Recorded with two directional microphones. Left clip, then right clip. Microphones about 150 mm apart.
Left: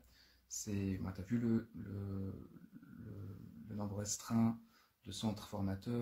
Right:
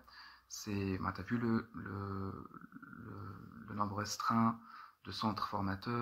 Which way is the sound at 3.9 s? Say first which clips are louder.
Right 5 dB; 25° left (ahead or behind).